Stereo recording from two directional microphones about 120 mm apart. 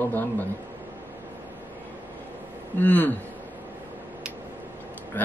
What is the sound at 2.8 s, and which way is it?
Speech, 15° left (ahead or behind).